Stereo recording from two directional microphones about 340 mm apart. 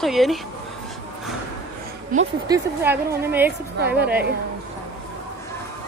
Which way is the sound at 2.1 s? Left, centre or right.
Right.